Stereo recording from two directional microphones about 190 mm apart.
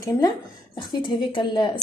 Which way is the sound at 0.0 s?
20° left (ahead or behind).